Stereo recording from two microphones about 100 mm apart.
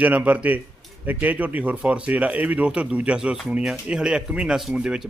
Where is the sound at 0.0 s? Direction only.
15° right (ahead or behind).